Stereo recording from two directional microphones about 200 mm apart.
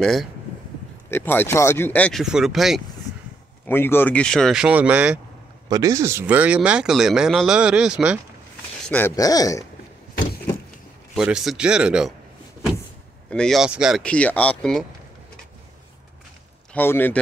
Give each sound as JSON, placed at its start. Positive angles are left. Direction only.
{"t": 0.0, "sound": "speech", "side_deg": 0}
{"t": 3.1, "sound": "a sound", "side_deg": 15}
{"t": 3.6, "sound": "speech", "side_deg": 10}
{"t": 5.7, "sound": "speech", "side_deg": -15}
{"t": 8.8, "sound": "speech", "side_deg": 10}
{"t": 11.1, "sound": "speech", "side_deg": -5}
{"t": 13.3, "sound": "speech", "side_deg": 0}
{"t": 16.7, "sound": "speech", "side_deg": 10}